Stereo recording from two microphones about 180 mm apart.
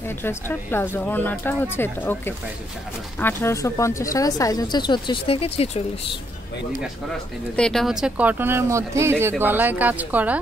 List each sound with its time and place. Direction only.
0.2 s speech: 10° left (ahead or behind); by 5.9 s 35° left (ahead or behind)
7.5 s speech: 5° left (ahead or behind)